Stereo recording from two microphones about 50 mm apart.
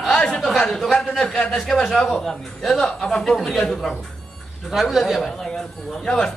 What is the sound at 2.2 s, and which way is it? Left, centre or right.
A man's voice, centre.